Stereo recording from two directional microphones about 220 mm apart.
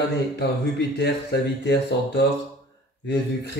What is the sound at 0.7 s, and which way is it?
Speech, 50° left (ahead or behind).